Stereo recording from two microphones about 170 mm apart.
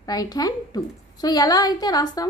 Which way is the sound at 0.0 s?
20° left (ahead or behind).